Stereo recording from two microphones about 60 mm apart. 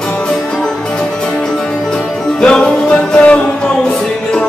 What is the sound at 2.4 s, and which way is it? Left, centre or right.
Music, centre.